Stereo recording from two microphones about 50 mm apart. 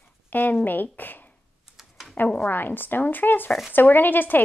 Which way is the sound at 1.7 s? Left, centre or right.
Centre.